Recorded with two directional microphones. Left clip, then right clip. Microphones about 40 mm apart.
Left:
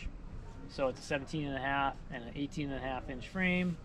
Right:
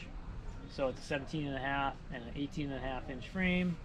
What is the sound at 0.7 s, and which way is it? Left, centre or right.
Speech, left.